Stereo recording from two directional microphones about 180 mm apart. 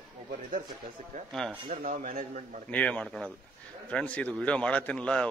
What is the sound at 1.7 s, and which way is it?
Speech, 50° right (ahead or behind).